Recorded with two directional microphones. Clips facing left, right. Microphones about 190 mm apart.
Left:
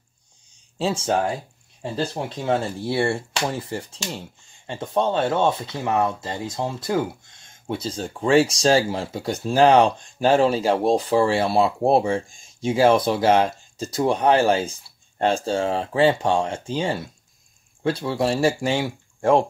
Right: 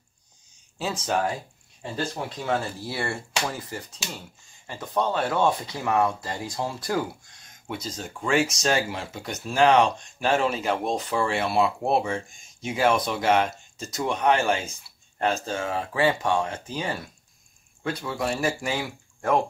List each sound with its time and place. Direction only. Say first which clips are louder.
0.7 s speech: left 4 dB; 30° left (ahead or behind)